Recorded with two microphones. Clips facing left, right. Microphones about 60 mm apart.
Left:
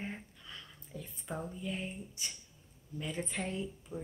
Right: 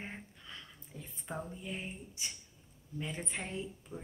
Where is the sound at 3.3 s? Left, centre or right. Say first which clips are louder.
Left 2 dB; right.